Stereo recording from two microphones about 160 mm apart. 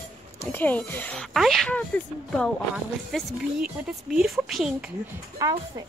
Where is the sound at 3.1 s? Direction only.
Centre (ahead or behind).